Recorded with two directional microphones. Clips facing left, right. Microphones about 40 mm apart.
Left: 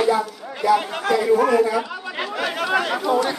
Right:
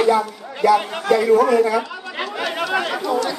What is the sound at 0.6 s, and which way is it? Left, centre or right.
A man's voice, right.